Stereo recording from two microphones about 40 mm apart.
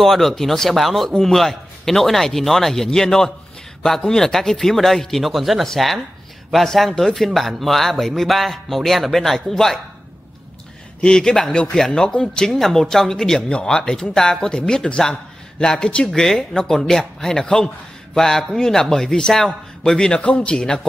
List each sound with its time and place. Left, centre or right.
0.0 s a man's voice: centre
11.0 s a man's voice: centre
12.5 s a man's voice: centre; by 16.1 s left
16.1 s a man's voice: centre
20.2 s speech: left